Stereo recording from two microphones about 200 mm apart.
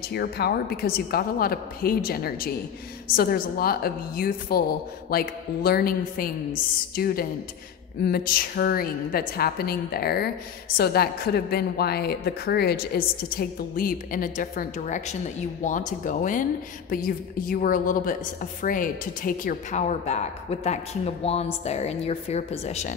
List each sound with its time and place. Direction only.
0.1 s a woman's voice: 50° left (ahead or behind); by 22.9 s 35° left (ahead or behind)